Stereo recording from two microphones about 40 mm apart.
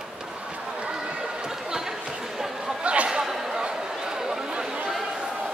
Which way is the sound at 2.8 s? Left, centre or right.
Right.